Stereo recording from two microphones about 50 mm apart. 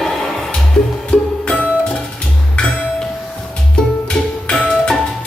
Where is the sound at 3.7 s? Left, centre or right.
Centre.